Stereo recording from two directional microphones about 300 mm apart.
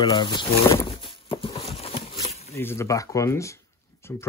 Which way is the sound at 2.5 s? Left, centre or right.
Centre.